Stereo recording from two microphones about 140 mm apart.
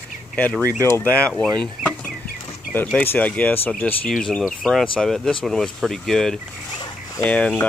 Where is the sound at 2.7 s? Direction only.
10° left (ahead or behind).